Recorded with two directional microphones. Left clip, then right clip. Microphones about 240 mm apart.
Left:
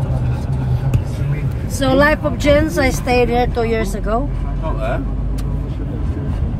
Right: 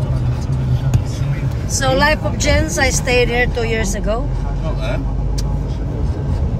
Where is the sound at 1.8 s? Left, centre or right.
Centre.